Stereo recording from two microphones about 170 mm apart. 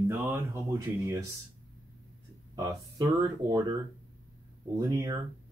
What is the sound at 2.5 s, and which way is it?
Speech, 20° right (ahead or behind).